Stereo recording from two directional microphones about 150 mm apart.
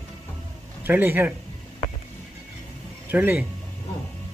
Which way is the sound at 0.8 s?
15° right (ahead or behind).